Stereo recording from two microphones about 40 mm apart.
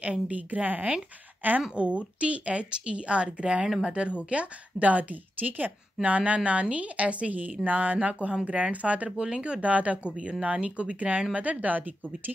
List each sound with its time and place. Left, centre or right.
0.0 s a woman's voice: right
1.8 s a woman's voice: right
6.0 s a woman's voice: right